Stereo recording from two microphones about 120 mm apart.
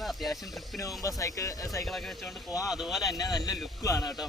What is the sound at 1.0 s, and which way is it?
Speech, 30° left (ahead or behind).